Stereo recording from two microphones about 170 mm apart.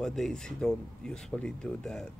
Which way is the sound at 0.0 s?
Centre (ahead or behind).